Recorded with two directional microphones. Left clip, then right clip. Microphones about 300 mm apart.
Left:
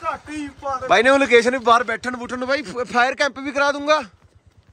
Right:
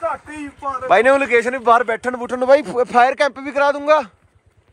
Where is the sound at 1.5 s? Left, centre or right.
Centre.